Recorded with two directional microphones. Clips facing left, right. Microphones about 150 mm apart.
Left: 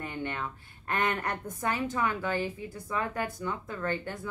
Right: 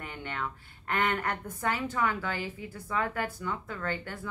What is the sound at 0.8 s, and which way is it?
Speech, 20° left (ahead or behind).